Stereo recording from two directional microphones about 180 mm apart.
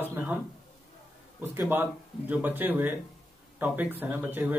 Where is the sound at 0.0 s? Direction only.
10° right (ahead or behind).